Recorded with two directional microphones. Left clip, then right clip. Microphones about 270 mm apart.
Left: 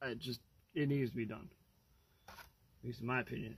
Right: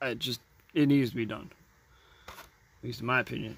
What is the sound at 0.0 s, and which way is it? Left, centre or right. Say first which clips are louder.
Speech: right 10 dB; centre.